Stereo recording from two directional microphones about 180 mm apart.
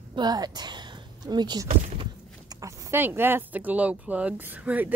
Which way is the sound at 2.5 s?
20° right (ahead or behind).